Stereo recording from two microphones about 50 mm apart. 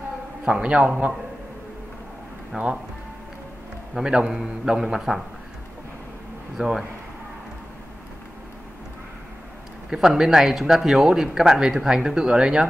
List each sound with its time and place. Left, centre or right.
0.5 s a man's voice: right
2.5 s a man's voice: centre
3.9 s speech: centre
6.5 s speech: centre
9.8 s speech: centre